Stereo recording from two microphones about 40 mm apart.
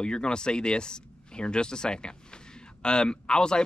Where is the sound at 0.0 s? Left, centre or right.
Left.